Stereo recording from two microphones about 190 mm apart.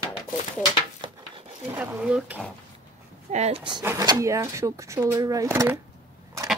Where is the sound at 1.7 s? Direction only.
5° right (ahead or behind).